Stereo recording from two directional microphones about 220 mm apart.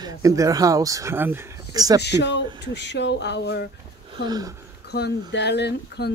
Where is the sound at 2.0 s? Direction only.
50° left (ahead or behind).